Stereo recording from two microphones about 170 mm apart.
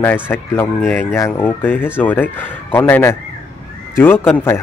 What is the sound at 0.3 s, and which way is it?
Speech, 10° left (ahead or behind).